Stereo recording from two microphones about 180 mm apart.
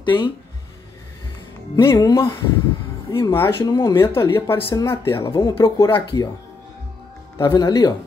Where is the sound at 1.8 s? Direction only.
15° left (ahead or behind).